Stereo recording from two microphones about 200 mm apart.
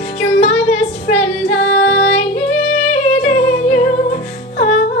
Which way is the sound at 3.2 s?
40° left (ahead or behind).